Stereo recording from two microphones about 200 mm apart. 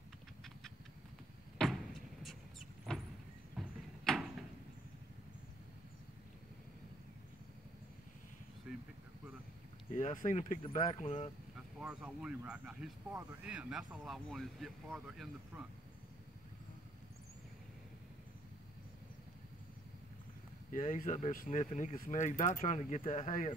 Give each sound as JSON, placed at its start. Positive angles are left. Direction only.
{"t": 0.4, "sound": "a sound", "side_deg": 0}
{"t": 1.6, "sound": "vehicle", "side_deg": 0}
{"t": 3.5, "sound": "a sound", "side_deg": 0}
{"t": 8.7, "sound": "vehicle", "side_deg": -5}
{"t": 9.9, "sound": "speech", "side_deg": 40}
{"t": 11.0, "sound": "speech", "side_deg": 30}
{"t": 11.8, "sound": "speech", "side_deg": -5}
{"t": 20.7, "sound": "speech", "side_deg": 40}